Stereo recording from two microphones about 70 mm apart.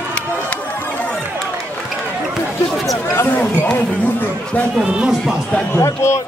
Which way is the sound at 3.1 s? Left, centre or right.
Left.